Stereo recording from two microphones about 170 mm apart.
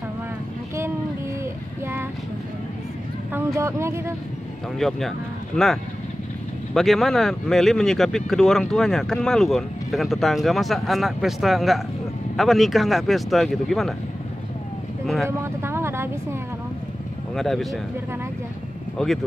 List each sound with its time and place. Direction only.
1.4 s child singing: 15° right (ahead or behind)
3.5 s speech: 15° right (ahead or behind)
4.7 s speech: centre (ahead or behind)
15.2 s speech: 15° right (ahead or behind)
17.4 s speech: centre (ahead or behind)
19.0 s speech: 5° left (ahead or behind)